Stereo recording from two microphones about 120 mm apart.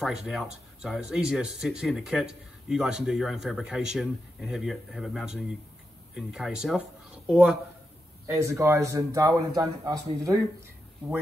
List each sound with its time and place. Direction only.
0.0 s speech: 5° right (ahead or behind)
8.3 s a man's voice: 25° right (ahead or behind)